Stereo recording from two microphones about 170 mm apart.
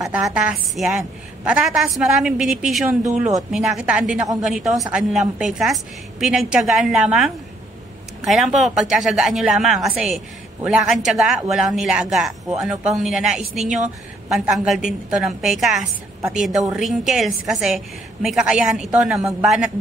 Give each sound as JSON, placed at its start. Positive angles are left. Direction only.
{"t": 0.0, "sound": "a woman's voice", "side_deg": -5}
{"t": 13.7, "sound": "speech", "side_deg": -45}
{"t": 14.3, "sound": "a woman's voice", "side_deg": -5}